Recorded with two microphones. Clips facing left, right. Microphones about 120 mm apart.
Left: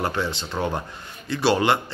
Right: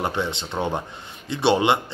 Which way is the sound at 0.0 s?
20° right (ahead or behind).